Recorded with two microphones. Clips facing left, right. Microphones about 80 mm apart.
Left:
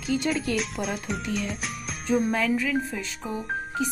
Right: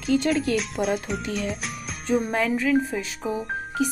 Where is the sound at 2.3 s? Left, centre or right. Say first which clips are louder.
Right 1 dB; right.